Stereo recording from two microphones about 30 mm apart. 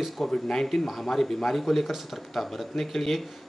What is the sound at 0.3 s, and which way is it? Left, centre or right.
Speech, centre.